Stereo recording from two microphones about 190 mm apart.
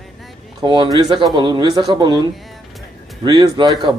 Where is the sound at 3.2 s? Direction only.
20° right (ahead or behind).